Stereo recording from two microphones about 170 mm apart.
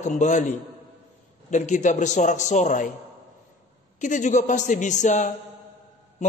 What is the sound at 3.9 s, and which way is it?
A man's voice, 45° left (ahead or behind).